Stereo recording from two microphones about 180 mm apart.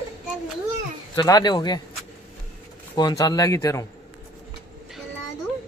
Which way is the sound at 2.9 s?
20° left (ahead or behind).